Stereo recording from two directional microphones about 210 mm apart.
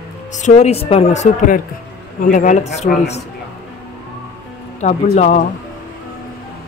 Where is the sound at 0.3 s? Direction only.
35° left (ahead or behind).